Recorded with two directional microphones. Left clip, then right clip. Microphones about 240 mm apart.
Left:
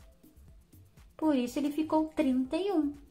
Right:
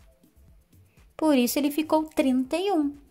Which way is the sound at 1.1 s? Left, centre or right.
Right.